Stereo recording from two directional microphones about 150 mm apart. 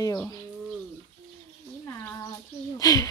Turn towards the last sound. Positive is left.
turn(degrees=25)  # may be behind; listen again after turning